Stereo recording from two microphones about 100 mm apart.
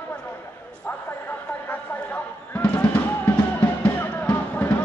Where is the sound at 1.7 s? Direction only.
15° left (ahead or behind).